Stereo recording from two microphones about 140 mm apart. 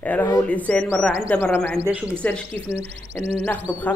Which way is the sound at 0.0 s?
10° left (ahead or behind).